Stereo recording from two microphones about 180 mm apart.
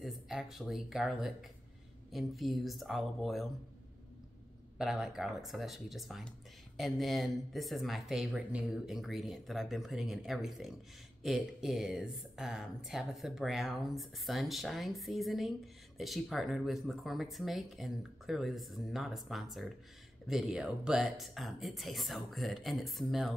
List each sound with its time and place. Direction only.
0.0 s speech: centre (ahead or behind)
4.7 s speech: 5° right (ahead or behind)